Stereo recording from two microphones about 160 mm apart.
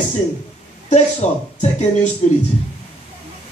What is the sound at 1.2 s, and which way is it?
Speech, 45° left (ahead or behind).